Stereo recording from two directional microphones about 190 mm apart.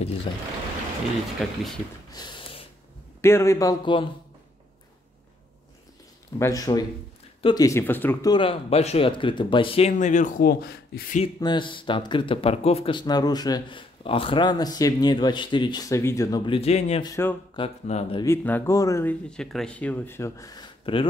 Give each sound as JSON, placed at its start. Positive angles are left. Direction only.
{"t": 0.3, "sound": "speech", "side_deg": 25}
{"t": 1.4, "sound": "speech", "side_deg": 0}
{"t": 2.1, "sound": "snort", "side_deg": 25}
{"t": 3.2, "sound": "speech", "side_deg": 15}
{"t": 6.3, "sound": "speech", "side_deg": 20}
{"t": 8.3, "sound": "speech", "side_deg": 25}
{"t": 11.3, "sound": "speech", "side_deg": 25}
{"t": 17.0, "sound": "speech", "side_deg": 15}
{"t": 17.6, "sound": "speech", "side_deg": 30}
{"t": 18.2, "sound": "speech", "side_deg": 10}